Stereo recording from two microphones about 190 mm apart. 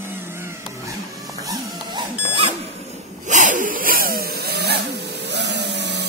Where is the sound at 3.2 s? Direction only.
40° right (ahead or behind).